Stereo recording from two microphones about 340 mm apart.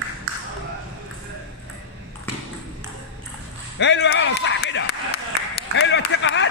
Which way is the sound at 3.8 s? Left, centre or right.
Left.